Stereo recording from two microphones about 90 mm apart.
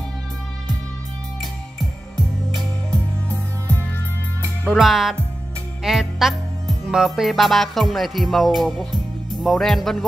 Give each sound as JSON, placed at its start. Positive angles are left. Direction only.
{"t": 1.4, "sound": "music", "side_deg": 0}
{"t": 2.9, "sound": "music", "side_deg": 15}
{"t": 4.7, "sound": "music", "side_deg": -5}